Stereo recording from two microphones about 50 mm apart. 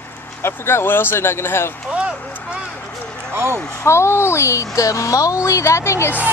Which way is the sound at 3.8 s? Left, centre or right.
Left.